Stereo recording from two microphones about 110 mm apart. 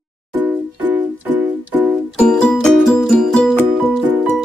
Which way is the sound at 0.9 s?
15° right (ahead or behind).